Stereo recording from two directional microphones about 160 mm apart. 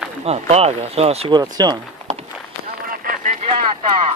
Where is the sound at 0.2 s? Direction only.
40° right (ahead or behind).